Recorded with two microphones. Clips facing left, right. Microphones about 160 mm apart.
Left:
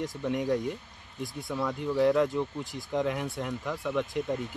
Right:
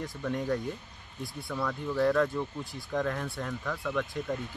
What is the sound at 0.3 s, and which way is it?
Speech, centre (ahead or behind).